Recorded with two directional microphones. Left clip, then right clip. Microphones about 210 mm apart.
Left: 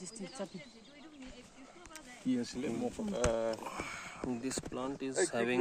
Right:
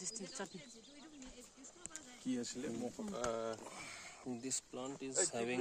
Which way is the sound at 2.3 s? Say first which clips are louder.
Left 6 dB; 35° left (ahead or behind).